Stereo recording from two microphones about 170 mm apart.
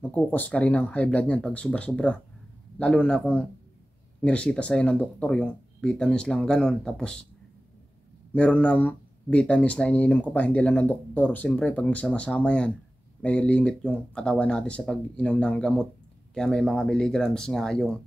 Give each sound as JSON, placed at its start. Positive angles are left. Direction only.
{"t": 0.1, "sound": "speech", "side_deg": 10}
{"t": 8.3, "sound": "speech", "side_deg": 5}